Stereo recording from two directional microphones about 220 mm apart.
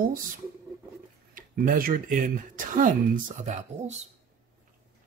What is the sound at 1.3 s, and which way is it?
Speech, 40° right (ahead or behind).